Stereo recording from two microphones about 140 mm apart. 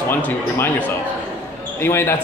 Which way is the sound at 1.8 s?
15° left (ahead or behind).